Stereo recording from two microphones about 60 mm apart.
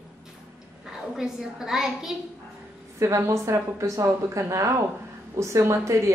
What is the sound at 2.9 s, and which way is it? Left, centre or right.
A woman's voice, right.